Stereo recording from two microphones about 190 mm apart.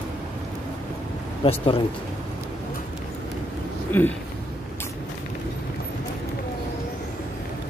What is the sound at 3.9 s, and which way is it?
Speech, 10° left (ahead or behind).